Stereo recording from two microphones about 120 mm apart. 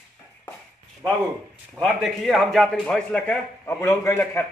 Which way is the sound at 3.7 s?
25° left (ahead or behind).